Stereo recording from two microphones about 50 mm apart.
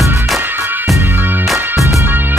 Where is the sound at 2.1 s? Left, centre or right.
Right.